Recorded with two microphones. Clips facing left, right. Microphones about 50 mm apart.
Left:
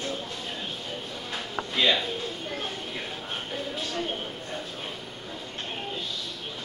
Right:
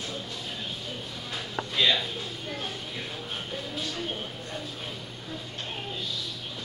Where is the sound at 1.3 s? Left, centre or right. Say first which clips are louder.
Even; centre.